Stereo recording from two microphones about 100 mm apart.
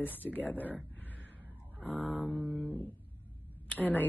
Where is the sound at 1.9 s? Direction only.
15° left (ahead or behind).